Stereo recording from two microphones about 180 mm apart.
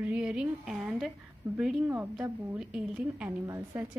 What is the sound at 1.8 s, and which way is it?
A woman's voice, 10° right (ahead or behind).